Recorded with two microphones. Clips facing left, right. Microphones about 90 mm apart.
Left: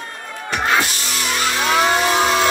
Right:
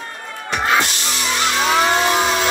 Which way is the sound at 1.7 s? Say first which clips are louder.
Left 1 dB; centre (ahead or behind).